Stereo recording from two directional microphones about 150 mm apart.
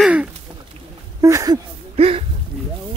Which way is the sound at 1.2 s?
20° right (ahead or behind).